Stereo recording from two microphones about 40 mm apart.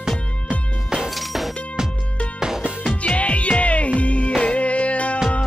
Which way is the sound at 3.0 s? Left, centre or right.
Left.